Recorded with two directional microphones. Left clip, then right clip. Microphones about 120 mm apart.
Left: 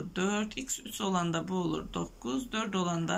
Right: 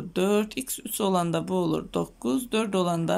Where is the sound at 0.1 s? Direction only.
45° right (ahead or behind).